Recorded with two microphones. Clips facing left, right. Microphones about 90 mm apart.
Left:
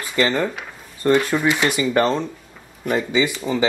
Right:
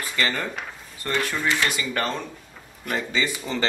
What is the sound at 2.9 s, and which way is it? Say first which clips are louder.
Speech: left 6 dB; 10° left (ahead or behind).